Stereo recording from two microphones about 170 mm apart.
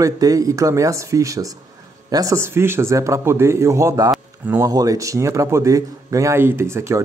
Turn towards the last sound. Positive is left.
turn(degrees=-15)  # may be behind; listen again after turning